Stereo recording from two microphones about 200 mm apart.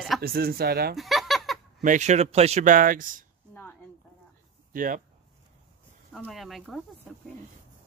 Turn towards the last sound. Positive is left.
turn(degrees=0)  # may be behind; listen again after turning